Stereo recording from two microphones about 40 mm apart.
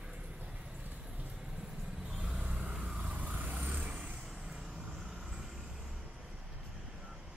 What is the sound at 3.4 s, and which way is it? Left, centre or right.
Vehicle, right.